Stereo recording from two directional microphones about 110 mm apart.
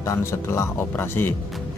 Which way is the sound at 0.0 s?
25° left (ahead or behind).